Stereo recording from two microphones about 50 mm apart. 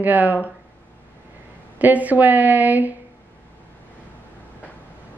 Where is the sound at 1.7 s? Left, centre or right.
Right.